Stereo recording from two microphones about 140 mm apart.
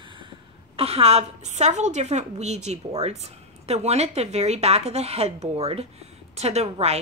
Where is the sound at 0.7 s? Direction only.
45° right (ahead or behind).